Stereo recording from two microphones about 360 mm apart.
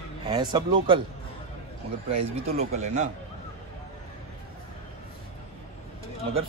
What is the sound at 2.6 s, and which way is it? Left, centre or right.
Speech, centre.